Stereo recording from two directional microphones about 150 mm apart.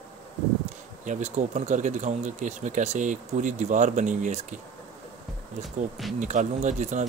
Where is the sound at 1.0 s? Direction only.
55° right (ahead or behind).